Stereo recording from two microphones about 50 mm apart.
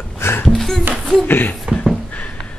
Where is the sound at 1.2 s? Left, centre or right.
Left.